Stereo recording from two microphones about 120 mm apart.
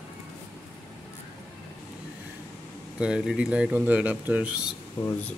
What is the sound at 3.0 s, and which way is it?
Speech, 5° right (ahead or behind).